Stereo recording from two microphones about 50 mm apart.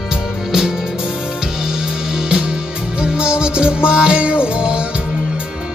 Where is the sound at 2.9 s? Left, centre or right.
Centre.